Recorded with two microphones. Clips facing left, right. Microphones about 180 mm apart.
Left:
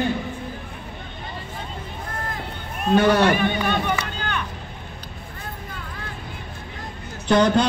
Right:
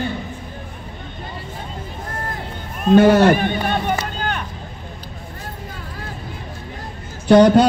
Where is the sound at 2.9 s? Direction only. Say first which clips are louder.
Right 6 dB; 50° right (ahead or behind).